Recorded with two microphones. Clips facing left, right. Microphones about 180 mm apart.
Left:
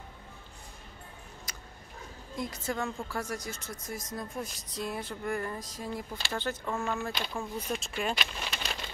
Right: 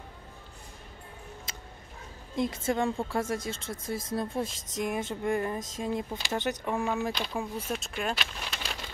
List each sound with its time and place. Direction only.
1.5 s a sound: 25° right (ahead or behind)
2.3 s speech: 25° right (ahead or behind)
7.3 s speech: 5° right (ahead or behind)